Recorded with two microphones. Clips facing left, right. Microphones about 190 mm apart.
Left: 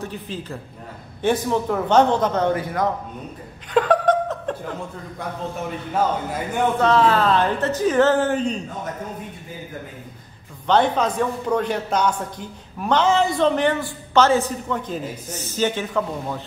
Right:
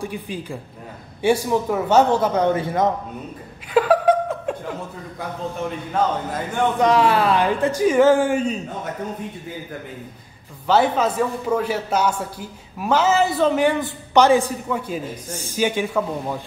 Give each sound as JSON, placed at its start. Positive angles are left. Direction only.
{"t": 0.0, "sound": "a man's voice", "side_deg": -10}
{"t": 2.5, "sound": "a man's voice", "side_deg": -25}
{"t": 3.7, "sound": "laughter", "side_deg": -5}
{"t": 5.9, "sound": "a man's voice", "side_deg": 10}
{"t": 6.8, "sound": "a man's voice", "side_deg": -10}
{"t": 10.7, "sound": "a man's voice", "side_deg": -5}